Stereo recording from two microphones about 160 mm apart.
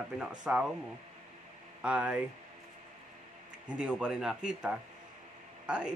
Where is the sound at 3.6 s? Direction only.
5° right (ahead or behind).